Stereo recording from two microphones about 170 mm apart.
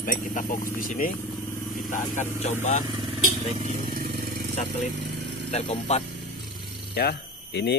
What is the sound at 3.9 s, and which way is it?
Vehicle, 55° right (ahead or behind).